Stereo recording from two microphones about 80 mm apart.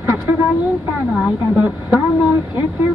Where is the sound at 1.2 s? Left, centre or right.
Centre.